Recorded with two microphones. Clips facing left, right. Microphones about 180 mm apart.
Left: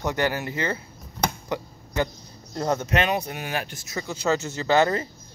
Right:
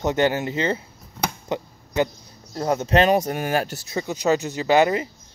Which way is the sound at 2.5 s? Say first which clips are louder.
Right 2 dB; 10° right (ahead or behind).